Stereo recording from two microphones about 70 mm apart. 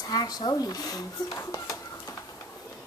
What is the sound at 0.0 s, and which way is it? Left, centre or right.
Speech, left.